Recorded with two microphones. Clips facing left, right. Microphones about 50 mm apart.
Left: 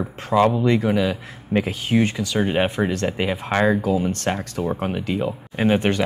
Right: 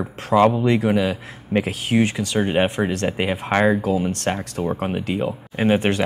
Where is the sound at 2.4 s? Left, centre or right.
Centre.